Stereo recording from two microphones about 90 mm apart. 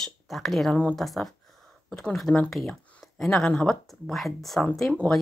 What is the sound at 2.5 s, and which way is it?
Speech, centre (ahead or behind).